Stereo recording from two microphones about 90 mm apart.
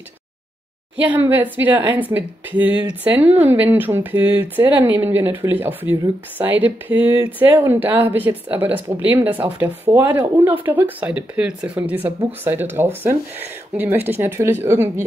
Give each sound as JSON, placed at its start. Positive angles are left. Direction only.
{"t": 1.0, "sound": "a woman's voice", "side_deg": -20}